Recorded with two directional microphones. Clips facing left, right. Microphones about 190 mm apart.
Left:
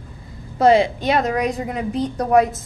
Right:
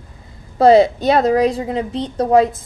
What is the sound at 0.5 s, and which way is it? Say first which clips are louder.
A woman's voice: right 4 dB; 35° right (ahead or behind).